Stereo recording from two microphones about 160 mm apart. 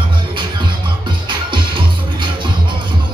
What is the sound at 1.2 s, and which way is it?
Music, 30° right (ahead or behind).